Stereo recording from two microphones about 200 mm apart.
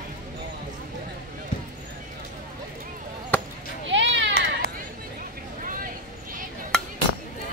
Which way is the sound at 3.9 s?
65° right (ahead or behind).